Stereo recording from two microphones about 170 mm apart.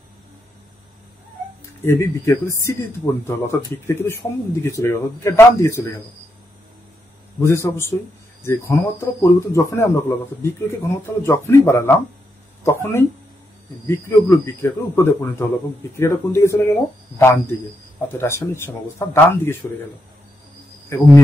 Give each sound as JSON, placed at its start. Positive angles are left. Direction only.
{"t": 1.9, "sound": "speech", "side_deg": 15}
{"t": 7.3, "sound": "speech", "side_deg": 15}
{"t": 20.9, "sound": "speech", "side_deg": 15}